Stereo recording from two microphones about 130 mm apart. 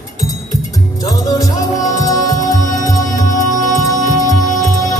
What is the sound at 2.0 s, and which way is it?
Music, 30° left (ahead or behind).